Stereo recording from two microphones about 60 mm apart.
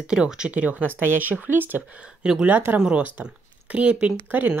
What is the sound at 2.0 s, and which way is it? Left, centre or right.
Speech, centre.